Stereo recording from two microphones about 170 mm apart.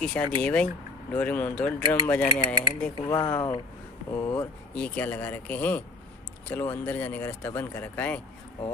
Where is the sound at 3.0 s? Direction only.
25° left (ahead or behind).